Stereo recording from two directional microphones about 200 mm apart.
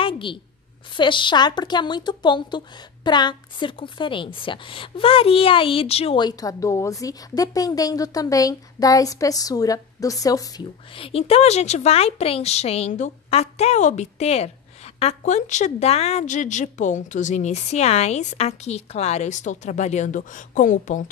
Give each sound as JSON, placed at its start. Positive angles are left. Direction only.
{"t": 0.0, "sound": "a sound", "side_deg": 25}
{"t": 0.9, "sound": "a woman's voice", "side_deg": 25}
{"t": 11.0, "sound": "a woman's voice", "side_deg": 30}